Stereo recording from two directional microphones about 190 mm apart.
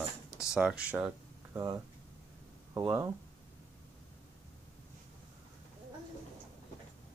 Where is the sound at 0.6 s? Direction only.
5° right (ahead or behind).